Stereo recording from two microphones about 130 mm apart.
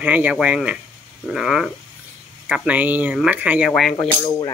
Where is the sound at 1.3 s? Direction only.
5° right (ahead or behind).